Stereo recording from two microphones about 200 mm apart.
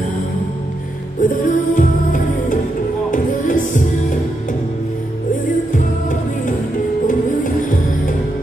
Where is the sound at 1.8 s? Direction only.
40° left (ahead or behind).